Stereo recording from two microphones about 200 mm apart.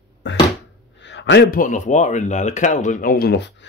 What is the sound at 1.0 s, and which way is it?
Speech, 60° left (ahead or behind).